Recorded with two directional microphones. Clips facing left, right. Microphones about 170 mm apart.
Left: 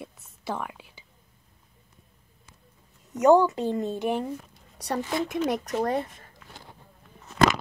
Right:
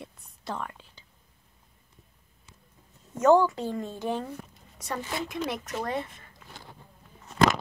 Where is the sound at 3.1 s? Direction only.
15° left (ahead or behind).